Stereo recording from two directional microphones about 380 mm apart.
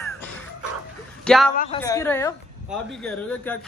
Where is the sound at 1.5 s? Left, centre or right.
Left.